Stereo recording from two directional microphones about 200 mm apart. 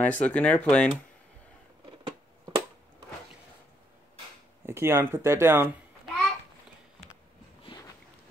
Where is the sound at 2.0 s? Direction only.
25° right (ahead or behind).